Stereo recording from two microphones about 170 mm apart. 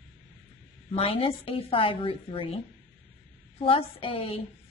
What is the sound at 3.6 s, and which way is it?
Speech, 30° left (ahead or behind).